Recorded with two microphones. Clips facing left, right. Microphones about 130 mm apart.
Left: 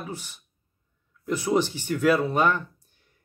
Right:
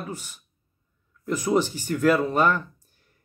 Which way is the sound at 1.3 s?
10° right (ahead or behind).